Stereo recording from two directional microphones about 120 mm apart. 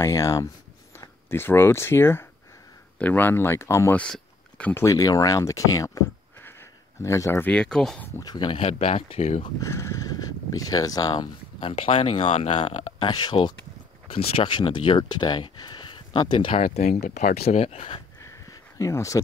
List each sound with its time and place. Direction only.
0.0 s speech: 25° left (ahead or behind)
4.0 s a sound: 10° left (ahead or behind)
4.7 s speech: 25° left (ahead or behind)
6.4 s a sound: 20° left (ahead or behind)
7.5 s speech: 5° left (ahead or behind)
8.2 s speech: 35° left (ahead or behind)
8.6 s speech: 55° left (ahead or behind)
9.6 s speech: 25° left (ahead or behind)
11.6 s speech: 50° left (ahead or behind)
12.2 s speech: 75° left (ahead or behind)
13.0 s speech: 35° left (ahead or behind)
17.0 s speech: 80° left; by 18.0 s 55° left (ahead or behind)
18.2 s a sound: 25° left (ahead or behind)